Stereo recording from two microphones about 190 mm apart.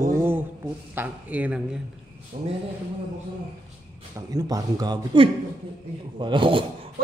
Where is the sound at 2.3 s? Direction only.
35° right (ahead or behind).